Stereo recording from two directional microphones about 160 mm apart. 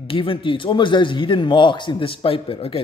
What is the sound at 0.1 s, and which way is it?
A man's voice, 35° left (ahead or behind).